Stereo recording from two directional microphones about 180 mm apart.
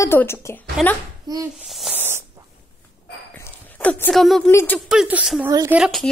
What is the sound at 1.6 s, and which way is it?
Speech, centre (ahead or behind).